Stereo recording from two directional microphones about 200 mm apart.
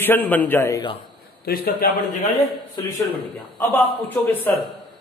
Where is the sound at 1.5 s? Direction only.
45° left (ahead or behind).